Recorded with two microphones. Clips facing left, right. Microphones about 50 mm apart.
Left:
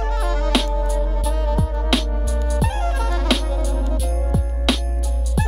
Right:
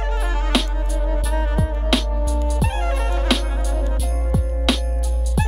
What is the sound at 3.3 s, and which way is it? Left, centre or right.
Music, centre.